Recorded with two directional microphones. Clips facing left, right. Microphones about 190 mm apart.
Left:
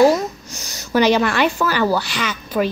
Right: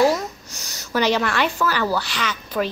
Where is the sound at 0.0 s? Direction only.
15° left (ahead or behind).